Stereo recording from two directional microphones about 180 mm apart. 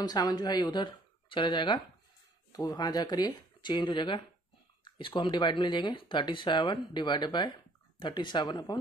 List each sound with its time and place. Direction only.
0.0 s speech: 20° left (ahead or behind)